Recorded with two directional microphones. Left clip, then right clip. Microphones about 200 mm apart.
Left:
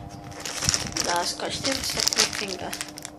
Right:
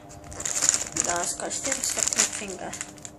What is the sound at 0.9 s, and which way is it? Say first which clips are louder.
Speech: left 3 dB; 10° left (ahead or behind).